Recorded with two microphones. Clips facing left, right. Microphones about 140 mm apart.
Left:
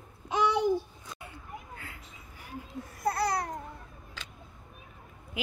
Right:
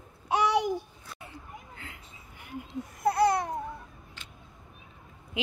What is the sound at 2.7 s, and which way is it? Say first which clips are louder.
Babbling: right 3 dB; 20° right (ahead or behind).